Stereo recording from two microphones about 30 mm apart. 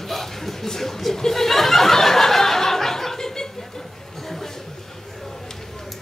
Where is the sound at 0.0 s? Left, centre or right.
Centre.